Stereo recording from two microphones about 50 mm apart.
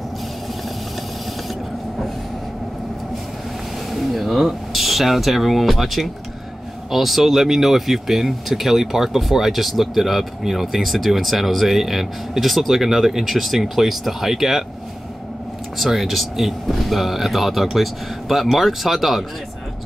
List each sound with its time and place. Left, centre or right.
3.9 s speech: centre
15.8 s speech: centre